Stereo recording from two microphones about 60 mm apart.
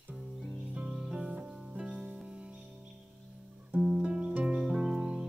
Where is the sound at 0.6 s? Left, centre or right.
Centre.